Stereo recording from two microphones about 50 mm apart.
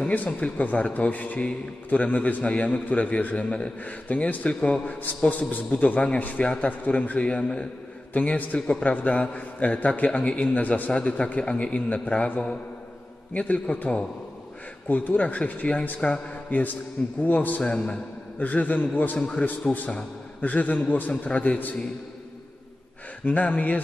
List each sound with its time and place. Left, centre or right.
0.1 s a man's voice: left
10.9 s a man's voice: left
16.0 s a man's voice: centre; by 17.6 s left
17.6 s a man's voice: centre
18.4 s a man's voice: left
23.2 s a man's voice: left